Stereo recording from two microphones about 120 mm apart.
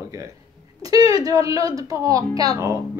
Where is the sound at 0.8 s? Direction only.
30° right (ahead or behind).